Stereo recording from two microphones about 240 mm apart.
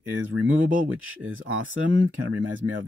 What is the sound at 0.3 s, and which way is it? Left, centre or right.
Speech, right.